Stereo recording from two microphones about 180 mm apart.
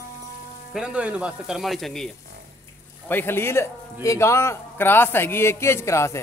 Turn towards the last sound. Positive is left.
turn(degrees=15)  # may be behind; listen again after turning